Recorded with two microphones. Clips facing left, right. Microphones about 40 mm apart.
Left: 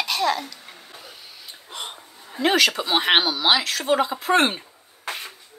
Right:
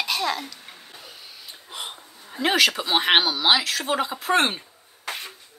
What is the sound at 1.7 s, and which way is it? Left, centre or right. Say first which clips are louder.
Speech: left 1 dB; centre.